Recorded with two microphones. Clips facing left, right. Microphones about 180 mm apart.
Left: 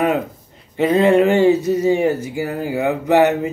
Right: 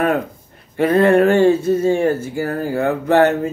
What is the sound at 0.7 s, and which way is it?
Speech, 15° left (ahead or behind).